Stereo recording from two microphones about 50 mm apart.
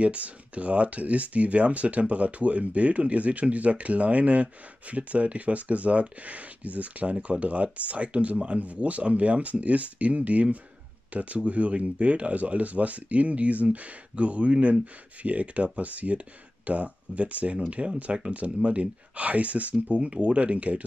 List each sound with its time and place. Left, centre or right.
0.0 s speech: right